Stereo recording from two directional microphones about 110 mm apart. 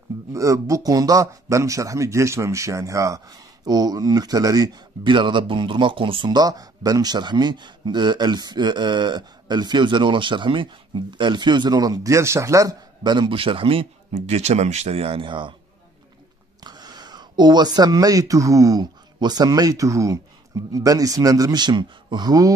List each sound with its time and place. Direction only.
0.3 s speech: 30° right (ahead or behind); by 15.5 s 50° right (ahead or behind)
16.6 s speech: 40° right (ahead or behind)